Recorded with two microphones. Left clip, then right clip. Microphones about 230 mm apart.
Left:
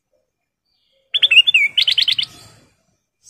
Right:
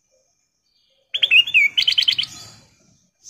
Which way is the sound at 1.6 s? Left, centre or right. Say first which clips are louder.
Left 1 dB; left.